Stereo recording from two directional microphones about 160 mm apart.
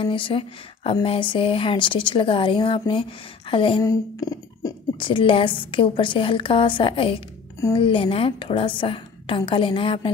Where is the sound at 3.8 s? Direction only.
20° left (ahead or behind).